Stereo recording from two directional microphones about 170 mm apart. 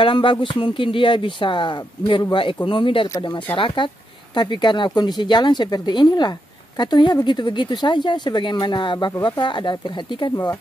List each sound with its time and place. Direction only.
0.0 s speech: 30° left (ahead or behind)
10.3 s speech: 15° left (ahead or behind)